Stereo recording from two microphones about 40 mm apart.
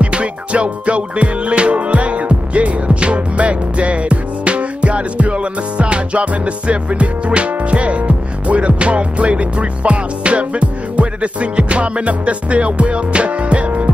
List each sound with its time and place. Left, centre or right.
0.0 s music: right